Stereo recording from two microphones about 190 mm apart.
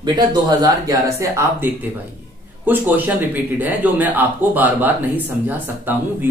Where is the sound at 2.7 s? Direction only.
10° right (ahead or behind).